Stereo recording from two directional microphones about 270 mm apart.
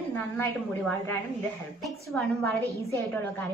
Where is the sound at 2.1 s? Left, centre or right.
Centre.